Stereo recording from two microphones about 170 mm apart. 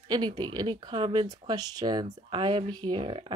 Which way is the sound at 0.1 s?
25° right (ahead or behind).